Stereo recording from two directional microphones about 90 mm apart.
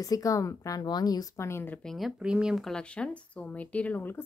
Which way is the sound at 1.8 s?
Centre (ahead or behind).